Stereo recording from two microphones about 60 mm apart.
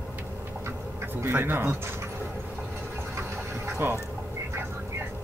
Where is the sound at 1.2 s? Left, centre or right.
Right.